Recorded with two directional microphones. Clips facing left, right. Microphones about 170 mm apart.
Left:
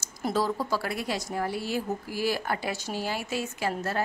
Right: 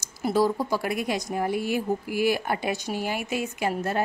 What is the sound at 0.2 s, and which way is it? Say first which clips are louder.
A woman's voice: right 4 dB; 10° right (ahead or behind).